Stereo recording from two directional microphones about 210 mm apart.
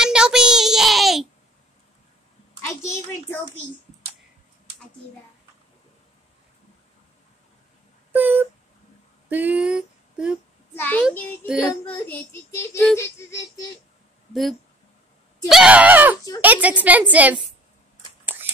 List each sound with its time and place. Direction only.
0.0 s child singing: 5° right (ahead or behind)
2.6 s a sound: 15° left (ahead or behind)
8.1 s a sound: 10° right (ahead or behind)
10.7 s a child's voice: 10° left (ahead or behind)
11.4 s child singing: 5° right (ahead or behind)
11.8 s a child's voice: 5° left (ahead or behind)
14.3 s a woman's voice: centre (ahead or behind)